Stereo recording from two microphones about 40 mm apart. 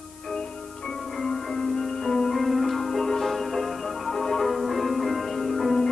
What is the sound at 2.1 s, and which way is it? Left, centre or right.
Music, centre.